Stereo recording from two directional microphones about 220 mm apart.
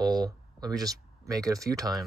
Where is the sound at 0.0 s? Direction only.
15° right (ahead or behind).